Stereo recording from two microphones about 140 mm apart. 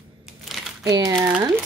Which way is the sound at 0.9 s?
25° right (ahead or behind).